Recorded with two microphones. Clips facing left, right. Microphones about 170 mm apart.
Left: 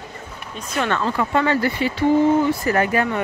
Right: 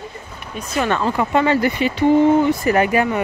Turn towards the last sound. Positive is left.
turn(degrees=-10)  # may be behind; listen again after turning